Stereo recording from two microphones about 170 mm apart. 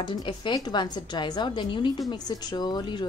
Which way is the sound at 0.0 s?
30° left (ahead or behind).